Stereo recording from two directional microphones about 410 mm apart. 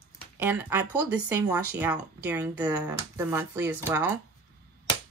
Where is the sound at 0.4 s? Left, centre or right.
Centre.